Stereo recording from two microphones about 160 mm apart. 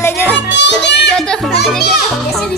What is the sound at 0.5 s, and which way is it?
Music, 90° left.